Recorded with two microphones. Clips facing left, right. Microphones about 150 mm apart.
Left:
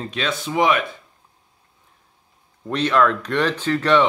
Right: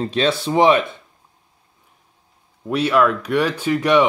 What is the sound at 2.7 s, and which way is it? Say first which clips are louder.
Speech: right 2 dB; 10° right (ahead or behind).